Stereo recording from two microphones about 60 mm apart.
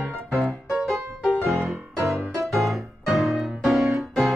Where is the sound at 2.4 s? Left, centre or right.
Centre.